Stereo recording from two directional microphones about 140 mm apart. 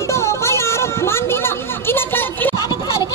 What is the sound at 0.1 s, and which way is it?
Children playing, 20° left (ahead or behind).